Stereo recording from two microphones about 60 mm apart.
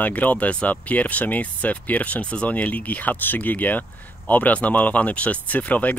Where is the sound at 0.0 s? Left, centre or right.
Left.